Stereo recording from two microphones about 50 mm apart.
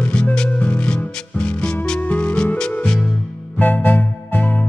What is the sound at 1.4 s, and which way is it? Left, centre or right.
Music, centre.